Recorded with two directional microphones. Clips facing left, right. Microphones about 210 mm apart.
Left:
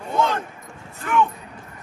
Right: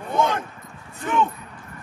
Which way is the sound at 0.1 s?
20° right (ahead or behind).